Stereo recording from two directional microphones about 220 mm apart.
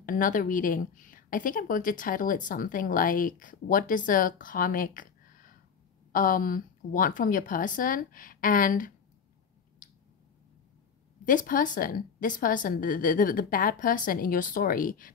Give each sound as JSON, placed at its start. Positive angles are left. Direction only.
{"t": 0.0, "sound": "a woman's voice", "side_deg": 40}
{"t": 11.2, "sound": "a woman's voice", "side_deg": 40}